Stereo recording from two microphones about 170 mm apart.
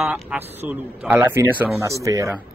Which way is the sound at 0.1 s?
10° right (ahead or behind).